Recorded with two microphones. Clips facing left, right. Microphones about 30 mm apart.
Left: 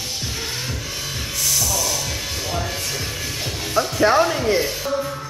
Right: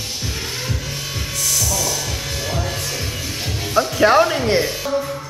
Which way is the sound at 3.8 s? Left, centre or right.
Right.